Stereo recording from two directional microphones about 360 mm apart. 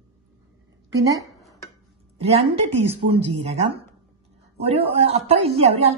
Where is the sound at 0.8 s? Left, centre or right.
Centre.